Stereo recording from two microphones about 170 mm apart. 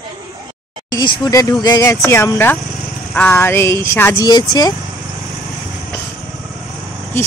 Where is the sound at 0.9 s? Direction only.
25° left (ahead or behind).